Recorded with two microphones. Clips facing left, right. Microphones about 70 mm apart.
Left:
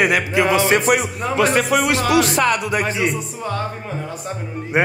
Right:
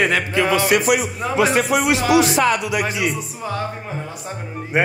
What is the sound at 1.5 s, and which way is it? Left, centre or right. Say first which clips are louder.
A man's voice: even; left.